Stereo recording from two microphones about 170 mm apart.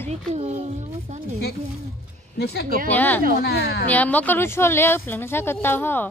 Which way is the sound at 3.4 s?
80° left.